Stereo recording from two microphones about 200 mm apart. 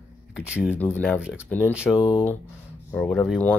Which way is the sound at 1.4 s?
10° left (ahead or behind).